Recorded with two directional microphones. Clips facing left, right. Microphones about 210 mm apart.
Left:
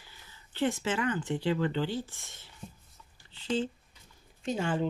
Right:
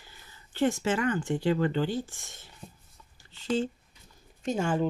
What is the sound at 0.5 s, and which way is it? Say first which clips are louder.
Speech: right 3 dB; 45° right (ahead or behind).